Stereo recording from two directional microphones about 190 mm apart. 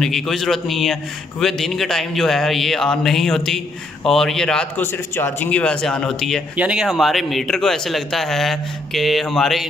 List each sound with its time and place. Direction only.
0.0 s a man's voice: centre (ahead or behind)